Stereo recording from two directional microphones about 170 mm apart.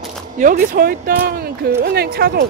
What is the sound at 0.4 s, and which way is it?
Speech, 55° right (ahead or behind).